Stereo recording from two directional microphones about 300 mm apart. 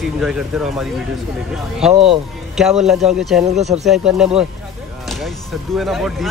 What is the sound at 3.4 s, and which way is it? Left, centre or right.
Speech, right.